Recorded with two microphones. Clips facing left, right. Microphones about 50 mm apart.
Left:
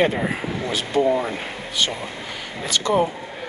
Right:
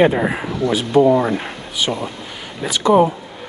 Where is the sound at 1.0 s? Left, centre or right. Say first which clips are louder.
Right 7 dB; right.